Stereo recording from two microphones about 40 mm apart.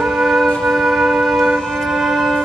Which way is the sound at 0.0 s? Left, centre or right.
Centre.